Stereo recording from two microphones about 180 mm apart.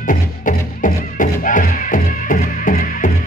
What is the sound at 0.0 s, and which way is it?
Music, 45° left (ahead or behind).